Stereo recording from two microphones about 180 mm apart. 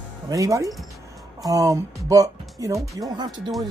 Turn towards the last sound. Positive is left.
turn(degrees=-25)  # may be behind; listen again after turning